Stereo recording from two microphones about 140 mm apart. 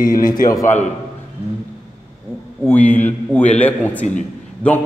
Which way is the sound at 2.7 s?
10° left (ahead or behind).